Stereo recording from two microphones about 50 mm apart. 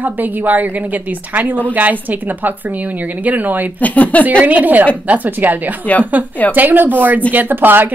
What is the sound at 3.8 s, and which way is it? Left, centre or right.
Speech, left.